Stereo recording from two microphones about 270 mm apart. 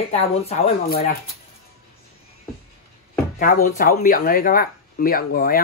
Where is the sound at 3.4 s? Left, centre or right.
Left.